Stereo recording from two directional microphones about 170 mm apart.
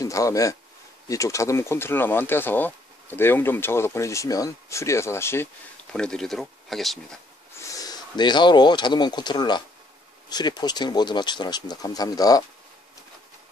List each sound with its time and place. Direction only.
0.0 s speech: 20° left (ahead or behind); by 7.2 s centre (ahead or behind)
7.6 s speech: 20° left (ahead or behind)